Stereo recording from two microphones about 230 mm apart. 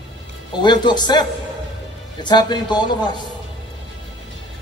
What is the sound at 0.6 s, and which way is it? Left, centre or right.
Speech, centre.